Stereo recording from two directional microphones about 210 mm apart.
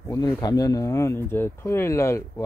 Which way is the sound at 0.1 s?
20° left (ahead or behind).